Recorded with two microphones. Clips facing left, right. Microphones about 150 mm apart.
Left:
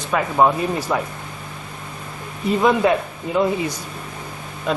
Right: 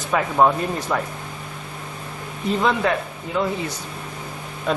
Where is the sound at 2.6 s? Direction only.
15° left (ahead or behind).